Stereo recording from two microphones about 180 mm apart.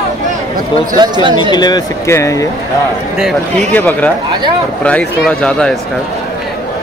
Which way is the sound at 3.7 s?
10° left (ahead or behind).